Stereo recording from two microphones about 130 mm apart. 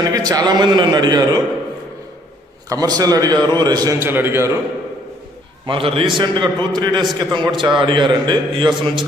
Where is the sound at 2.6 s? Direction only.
30° right (ahead or behind).